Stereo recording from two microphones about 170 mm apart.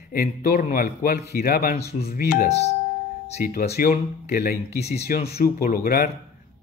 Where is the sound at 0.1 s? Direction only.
65° left (ahead or behind).